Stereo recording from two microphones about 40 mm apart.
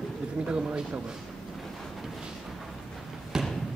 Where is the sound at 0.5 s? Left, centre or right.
Right.